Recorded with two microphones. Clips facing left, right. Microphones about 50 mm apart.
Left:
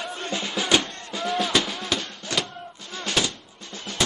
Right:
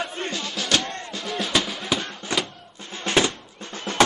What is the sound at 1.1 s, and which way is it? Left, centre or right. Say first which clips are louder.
Music: left 3 dB; centre.